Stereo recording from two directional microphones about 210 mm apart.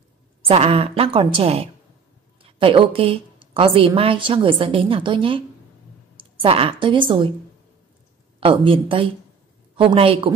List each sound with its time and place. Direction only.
0.4 s a woman's voice: 25° right (ahead or behind)
8.4 s a woman's voice: 25° right (ahead or behind)